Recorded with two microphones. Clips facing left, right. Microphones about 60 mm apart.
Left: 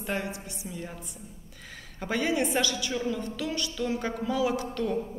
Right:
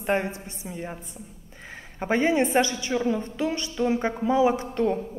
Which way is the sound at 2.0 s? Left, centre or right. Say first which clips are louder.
Right 5 dB; right.